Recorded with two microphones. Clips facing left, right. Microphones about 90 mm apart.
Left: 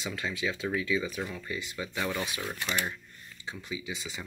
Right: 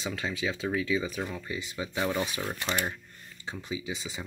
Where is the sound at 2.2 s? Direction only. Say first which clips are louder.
Right 2 dB; 35° right (ahead or behind).